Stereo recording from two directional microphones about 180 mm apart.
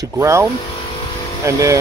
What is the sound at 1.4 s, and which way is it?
Speech, 15° right (ahead or behind).